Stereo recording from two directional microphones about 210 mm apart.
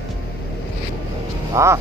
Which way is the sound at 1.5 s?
15° right (ahead or behind).